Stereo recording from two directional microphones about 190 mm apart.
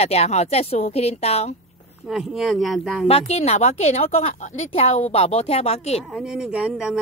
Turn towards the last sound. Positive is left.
turn(degrees=-5)  # may be behind; listen again after turning